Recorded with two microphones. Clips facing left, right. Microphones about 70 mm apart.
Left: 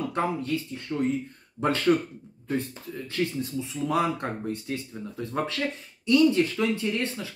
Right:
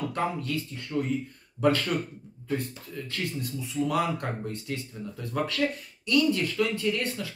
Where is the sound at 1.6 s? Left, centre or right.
Left.